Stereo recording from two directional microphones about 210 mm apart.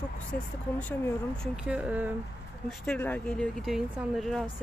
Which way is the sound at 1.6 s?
5° right (ahead or behind).